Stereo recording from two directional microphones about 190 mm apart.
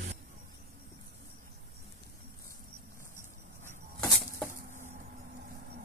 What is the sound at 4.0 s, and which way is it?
Bird flight, 15° left (ahead or behind).